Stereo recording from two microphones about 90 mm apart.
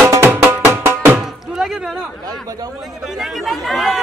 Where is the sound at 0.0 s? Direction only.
30° right (ahead or behind).